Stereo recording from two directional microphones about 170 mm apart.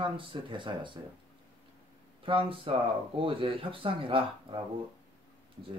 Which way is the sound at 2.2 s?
30° right (ahead or behind).